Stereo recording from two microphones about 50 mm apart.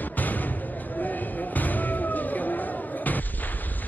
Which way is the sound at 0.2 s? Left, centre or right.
Left.